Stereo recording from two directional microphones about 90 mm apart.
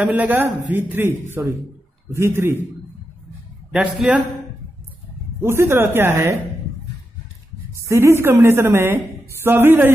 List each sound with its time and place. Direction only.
0.0 s a man's voice: 20° right (ahead or behind)
3.7 s speech: 15° right (ahead or behind)
5.4 s a man's voice: 25° right (ahead or behind)
7.7 s a woman's voice: 30° right (ahead or behind)